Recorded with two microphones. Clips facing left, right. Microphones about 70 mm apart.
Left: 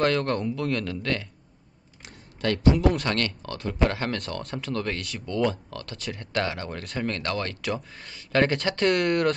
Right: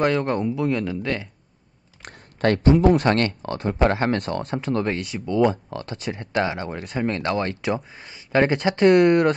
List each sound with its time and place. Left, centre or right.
0.0 s speech: centre
2.0 s speech: right; by 5.6 s centre
5.7 s speech: right
6.8 s speech: centre
7.1 s speech: right